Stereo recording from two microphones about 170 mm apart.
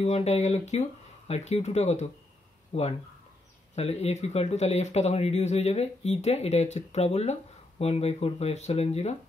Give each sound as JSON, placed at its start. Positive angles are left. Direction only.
{"t": 0.0, "sound": "speech", "side_deg": 40}